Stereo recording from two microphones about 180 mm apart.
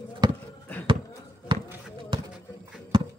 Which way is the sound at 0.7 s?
10° left (ahead or behind).